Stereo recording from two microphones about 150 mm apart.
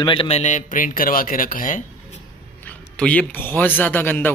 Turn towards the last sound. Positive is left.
turn(degrees=10)  # may be behind; listen again after turning